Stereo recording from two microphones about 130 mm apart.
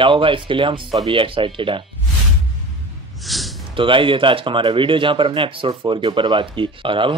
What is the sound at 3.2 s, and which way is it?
Snort, centre (ahead or behind).